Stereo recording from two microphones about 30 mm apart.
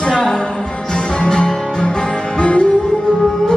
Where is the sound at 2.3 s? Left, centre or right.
Left.